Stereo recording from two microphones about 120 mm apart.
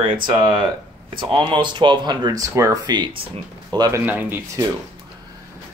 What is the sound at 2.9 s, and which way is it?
Speech, 40° right (ahead or behind).